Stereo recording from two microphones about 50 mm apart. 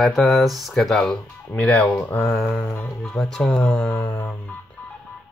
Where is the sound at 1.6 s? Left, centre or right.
Left.